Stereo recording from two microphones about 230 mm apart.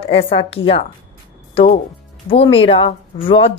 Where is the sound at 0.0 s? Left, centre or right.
Left.